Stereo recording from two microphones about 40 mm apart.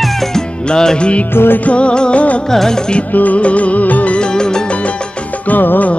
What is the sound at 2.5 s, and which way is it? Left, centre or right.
Music, centre.